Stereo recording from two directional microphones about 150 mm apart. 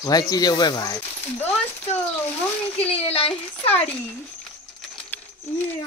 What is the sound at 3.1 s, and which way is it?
Speech, 40° left (ahead or behind).